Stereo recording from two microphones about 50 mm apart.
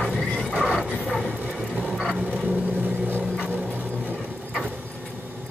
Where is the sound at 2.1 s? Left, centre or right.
Right.